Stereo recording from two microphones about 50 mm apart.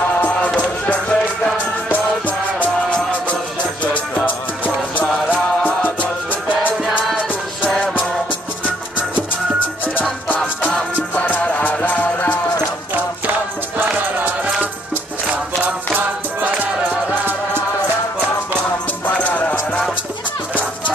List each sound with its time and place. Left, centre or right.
0.6 s music: left
7.7 s music: centre
10.2 s music: left
16.0 s music: right
19.0 s music: left